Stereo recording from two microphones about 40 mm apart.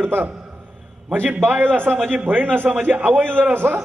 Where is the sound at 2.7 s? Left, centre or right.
Right.